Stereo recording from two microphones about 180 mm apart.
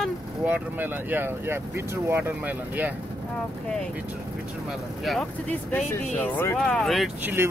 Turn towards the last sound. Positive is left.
turn(degrees=-10)  # may be behind; listen again after turning